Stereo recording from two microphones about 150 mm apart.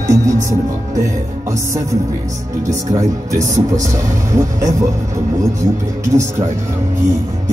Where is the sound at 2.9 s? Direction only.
20° right (ahead or behind).